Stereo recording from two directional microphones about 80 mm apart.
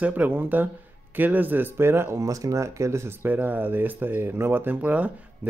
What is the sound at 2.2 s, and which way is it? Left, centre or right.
Speech, right.